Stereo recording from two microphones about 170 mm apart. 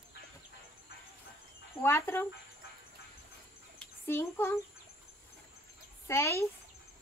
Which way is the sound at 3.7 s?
15° left (ahead or behind).